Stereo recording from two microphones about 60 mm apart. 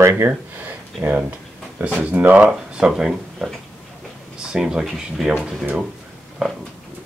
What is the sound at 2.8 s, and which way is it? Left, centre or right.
Speech, centre.